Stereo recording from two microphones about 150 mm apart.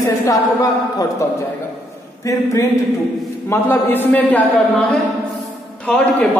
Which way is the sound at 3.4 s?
15° left (ahead or behind).